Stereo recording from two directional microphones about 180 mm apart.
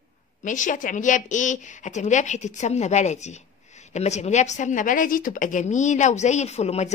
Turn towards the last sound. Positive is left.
turn(degrees=35)  # may be behind; listen again after turning